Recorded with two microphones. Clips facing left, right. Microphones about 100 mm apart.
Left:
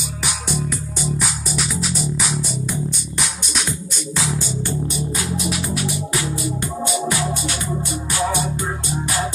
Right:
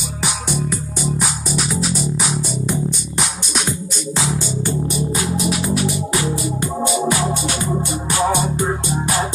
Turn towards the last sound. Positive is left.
turn(degrees=-25)  # may be behind; listen again after turning